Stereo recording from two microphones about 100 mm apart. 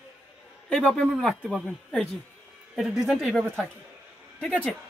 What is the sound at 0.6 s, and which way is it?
Speech, 10° left (ahead or behind).